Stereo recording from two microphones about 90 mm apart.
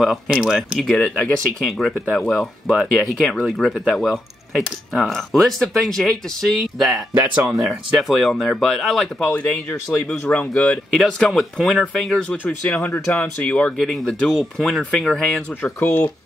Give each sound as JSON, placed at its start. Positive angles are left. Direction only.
{"t": 0.0, "sound": "speech", "side_deg": -5}
{"t": 0.7, "sound": "speech", "side_deg": 5}
{"t": 1.0, "sound": "speech", "side_deg": 15}
{"t": 1.6, "sound": "speech", "side_deg": 0}
{"t": 7.2, "sound": "speech", "side_deg": -20}
{"t": 7.6, "sound": "speech", "side_deg": 0}
{"t": 9.2, "sound": "speech", "side_deg": 15}
{"t": 10.9, "sound": "speech", "side_deg": 5}
{"t": 14.0, "sound": "speech", "side_deg": 0}